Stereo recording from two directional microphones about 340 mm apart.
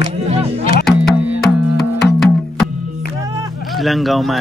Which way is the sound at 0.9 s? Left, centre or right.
Centre.